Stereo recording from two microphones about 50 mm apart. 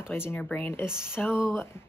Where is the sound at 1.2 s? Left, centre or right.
Left.